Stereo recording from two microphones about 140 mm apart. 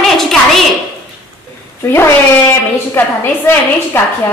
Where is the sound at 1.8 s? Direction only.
20° left (ahead or behind).